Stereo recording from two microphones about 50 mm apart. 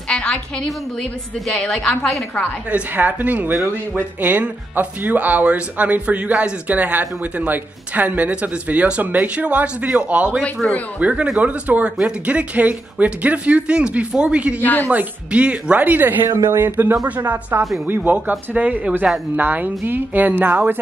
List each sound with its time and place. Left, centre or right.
0.1 s music: centre
1.6 s a woman's voice: left
3.0 s speech: right
10.6 s a woman's voice: left
11.0 s speech: right
14.6 s speech: left
14.9 s speech: right
16.3 s speech: right
16.6 s speech: right